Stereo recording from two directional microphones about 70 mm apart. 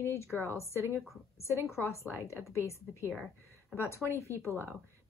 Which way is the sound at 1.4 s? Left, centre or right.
Left.